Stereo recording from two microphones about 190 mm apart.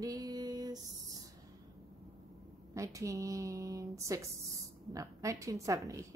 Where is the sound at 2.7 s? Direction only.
15° right (ahead or behind).